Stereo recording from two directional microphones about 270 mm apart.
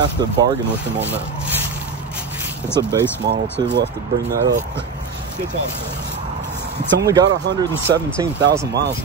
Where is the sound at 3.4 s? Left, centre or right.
Centre.